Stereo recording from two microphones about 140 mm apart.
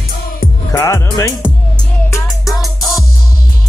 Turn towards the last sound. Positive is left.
turn(degrees=0)  # may be behind; listen again after turning